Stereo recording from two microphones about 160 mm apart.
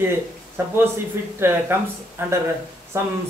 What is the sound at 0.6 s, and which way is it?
Speech, 15° right (ahead or behind).